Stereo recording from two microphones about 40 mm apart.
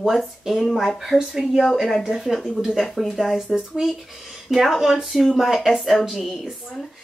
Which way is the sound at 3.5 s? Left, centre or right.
Centre.